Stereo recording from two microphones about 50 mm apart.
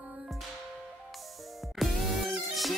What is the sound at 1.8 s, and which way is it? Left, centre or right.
Music, centre.